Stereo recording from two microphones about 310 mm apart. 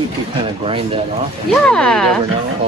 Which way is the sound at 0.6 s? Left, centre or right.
Centre.